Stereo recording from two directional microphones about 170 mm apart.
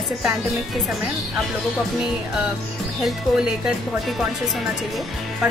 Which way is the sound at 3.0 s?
5° right (ahead or behind).